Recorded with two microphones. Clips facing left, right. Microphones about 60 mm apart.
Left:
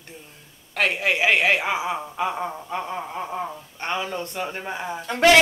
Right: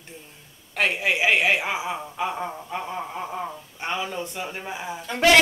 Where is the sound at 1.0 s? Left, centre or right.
Centre.